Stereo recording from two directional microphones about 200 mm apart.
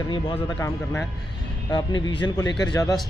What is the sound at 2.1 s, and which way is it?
Speech, 20° left (ahead or behind).